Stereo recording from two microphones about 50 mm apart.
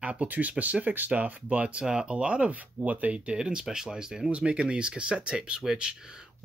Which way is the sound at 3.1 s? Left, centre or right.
Centre.